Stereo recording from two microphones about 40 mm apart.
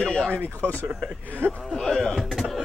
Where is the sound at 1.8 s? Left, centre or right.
Centre.